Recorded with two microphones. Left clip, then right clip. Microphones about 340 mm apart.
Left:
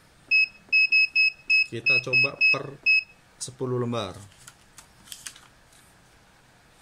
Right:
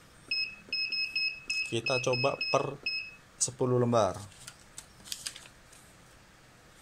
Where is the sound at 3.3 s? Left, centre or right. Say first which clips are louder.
Right 1 dB; centre.